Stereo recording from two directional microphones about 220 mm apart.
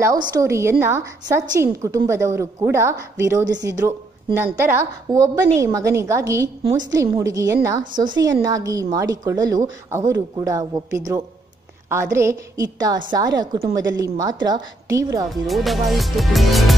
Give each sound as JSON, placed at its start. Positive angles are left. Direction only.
{"t": 0.0, "sound": "a woman's voice", "side_deg": -15}
{"t": 4.6, "sound": "a woman's voice", "side_deg": -15}
{"t": 15.4, "sound": "speech", "side_deg": 0}